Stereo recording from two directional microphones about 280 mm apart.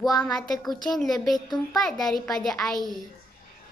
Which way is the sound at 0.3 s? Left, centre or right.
Centre.